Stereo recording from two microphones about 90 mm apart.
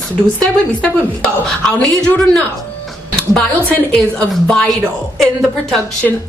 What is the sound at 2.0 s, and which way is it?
Speech, 10° left (ahead or behind).